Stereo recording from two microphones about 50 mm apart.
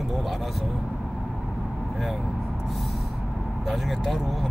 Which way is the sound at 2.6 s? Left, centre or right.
Centre.